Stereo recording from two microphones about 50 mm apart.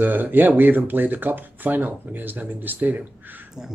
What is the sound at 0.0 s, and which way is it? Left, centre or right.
Speech, right.